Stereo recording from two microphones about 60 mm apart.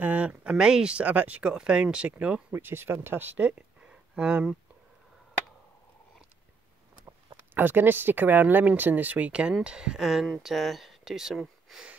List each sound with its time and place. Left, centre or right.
0.0 s speech: right
1.5 s speech: centre
2.5 s speech: right; by 4.5 s centre
7.5 s speech: right; by 11.8 s centre